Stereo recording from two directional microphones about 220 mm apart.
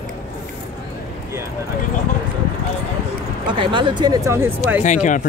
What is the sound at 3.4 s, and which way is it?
Speech, 20° right (ahead or behind).